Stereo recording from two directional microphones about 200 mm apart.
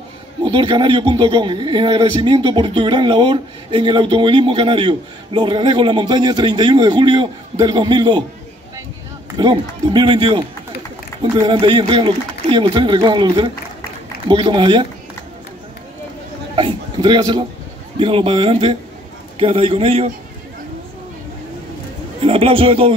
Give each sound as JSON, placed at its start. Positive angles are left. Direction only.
{"t": 0.4, "sound": "a man's voice", "side_deg": -25}
{"t": 9.4, "sound": "a man's voice", "side_deg": -20}
{"t": 16.5, "sound": "a man's voice", "side_deg": -25}
{"t": 22.2, "sound": "a man's voice", "side_deg": -25}